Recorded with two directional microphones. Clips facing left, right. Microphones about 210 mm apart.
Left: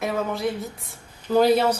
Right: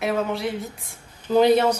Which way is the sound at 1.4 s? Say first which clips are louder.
Right 2 dB; 5° left (ahead or behind).